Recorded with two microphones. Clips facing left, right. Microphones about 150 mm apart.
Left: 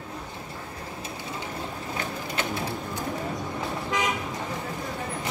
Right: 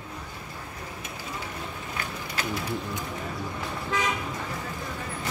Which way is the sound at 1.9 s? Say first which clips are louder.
Left 3 dB; 25° left (ahead or behind).